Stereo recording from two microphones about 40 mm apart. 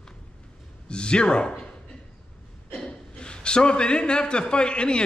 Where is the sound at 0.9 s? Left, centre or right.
Left.